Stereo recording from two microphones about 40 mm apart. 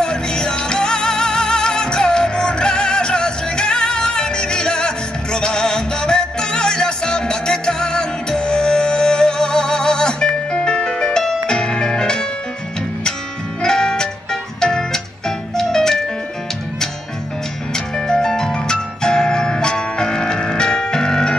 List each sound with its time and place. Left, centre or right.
0.0 s music: centre
13.6 s music: centre
17.7 s music: centre